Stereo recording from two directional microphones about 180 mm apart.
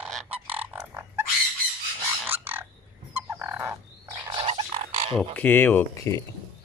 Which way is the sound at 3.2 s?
15° right (ahead or behind).